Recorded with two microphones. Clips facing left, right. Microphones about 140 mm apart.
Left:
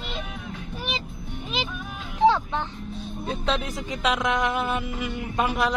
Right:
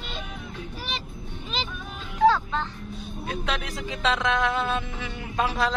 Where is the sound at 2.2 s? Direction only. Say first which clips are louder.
Even; 20° left (ahead or behind).